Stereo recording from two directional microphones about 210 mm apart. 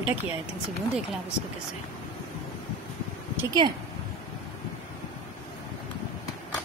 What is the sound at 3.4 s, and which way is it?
Speech, 20° right (ahead or behind).